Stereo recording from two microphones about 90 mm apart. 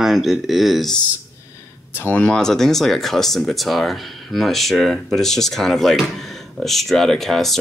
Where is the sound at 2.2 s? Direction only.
5° left (ahead or behind).